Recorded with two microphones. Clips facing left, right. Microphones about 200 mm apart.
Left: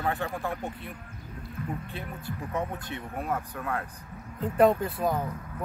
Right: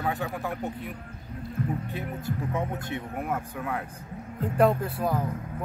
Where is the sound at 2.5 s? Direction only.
10° right (ahead or behind).